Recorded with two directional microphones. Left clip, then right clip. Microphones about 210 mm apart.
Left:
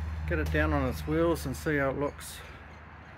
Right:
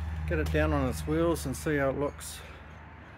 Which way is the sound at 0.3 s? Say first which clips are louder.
Even; 10° right (ahead or behind).